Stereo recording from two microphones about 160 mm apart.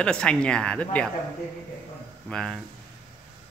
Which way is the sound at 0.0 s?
5° left (ahead or behind).